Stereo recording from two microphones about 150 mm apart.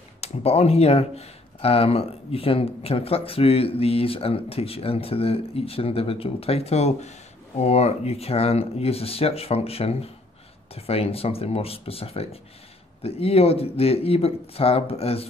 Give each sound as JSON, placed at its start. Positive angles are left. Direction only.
{"t": 0.2, "sound": "speech", "side_deg": 40}